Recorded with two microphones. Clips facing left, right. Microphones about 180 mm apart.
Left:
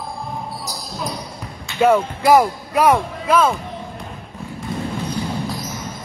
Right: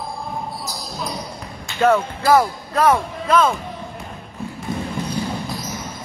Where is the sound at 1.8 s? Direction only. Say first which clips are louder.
Left 2 dB; 10° left (ahead or behind).